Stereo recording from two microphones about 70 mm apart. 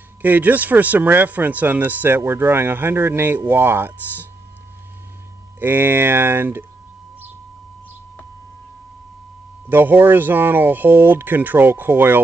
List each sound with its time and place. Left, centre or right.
0.2 s speech: right
5.6 s speech: right
9.7 s speech: right